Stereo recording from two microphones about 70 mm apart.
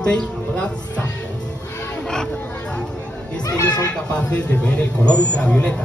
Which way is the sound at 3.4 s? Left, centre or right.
Left.